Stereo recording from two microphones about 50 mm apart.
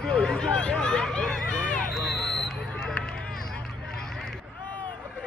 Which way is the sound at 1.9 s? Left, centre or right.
Centre.